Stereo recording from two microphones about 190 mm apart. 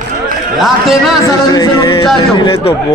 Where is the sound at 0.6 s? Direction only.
Centre (ahead or behind).